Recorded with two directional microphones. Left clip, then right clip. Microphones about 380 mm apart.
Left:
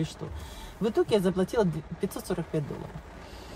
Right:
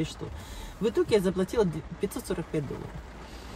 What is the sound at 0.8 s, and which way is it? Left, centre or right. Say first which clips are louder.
Speech: even; centre.